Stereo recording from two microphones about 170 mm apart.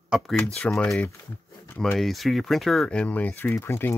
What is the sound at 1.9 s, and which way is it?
Speech, centre (ahead or behind).